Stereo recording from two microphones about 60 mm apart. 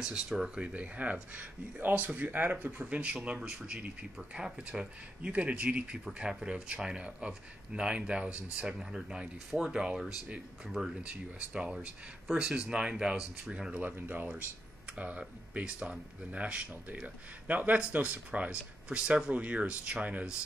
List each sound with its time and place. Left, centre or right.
0.0 s speech: centre